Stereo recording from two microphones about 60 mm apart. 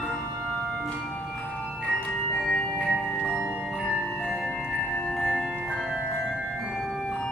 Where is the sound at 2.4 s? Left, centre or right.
Centre.